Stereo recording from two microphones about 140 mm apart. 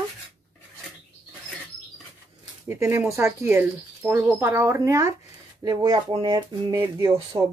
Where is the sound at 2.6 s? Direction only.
20° right (ahead or behind).